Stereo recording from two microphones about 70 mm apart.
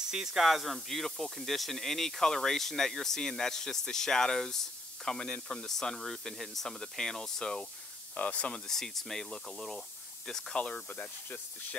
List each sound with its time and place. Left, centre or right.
0.1 s speech: centre
8.6 s speech: centre